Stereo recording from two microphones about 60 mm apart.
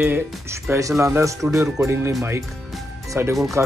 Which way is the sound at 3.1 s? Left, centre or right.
Right.